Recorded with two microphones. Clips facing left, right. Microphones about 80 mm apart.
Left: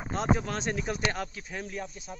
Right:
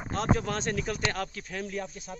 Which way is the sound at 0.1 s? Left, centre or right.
Centre.